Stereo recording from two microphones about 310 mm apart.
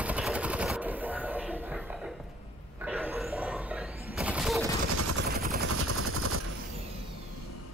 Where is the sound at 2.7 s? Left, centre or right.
Centre.